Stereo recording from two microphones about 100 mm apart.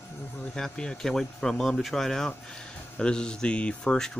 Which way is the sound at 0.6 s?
5° left (ahead or behind).